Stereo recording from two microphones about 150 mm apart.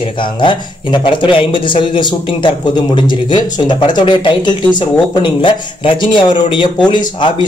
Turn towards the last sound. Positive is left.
turn(degrees=30)  # may be behind; listen again after turning